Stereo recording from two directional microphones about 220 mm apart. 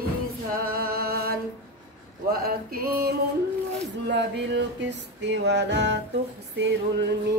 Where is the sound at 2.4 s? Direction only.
45° right (ahead or behind).